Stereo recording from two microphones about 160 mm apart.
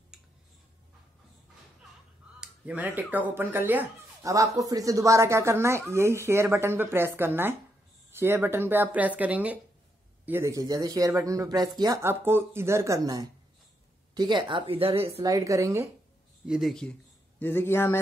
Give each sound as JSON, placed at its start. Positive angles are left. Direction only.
{"t": 2.4, "sound": "a woman's voice", "side_deg": -10}
{"t": 15.2, "sound": "speech", "side_deg": -20}
{"t": 16.4, "sound": "speech", "side_deg": 0}
{"t": 17.4, "sound": "a man's voice", "side_deg": 10}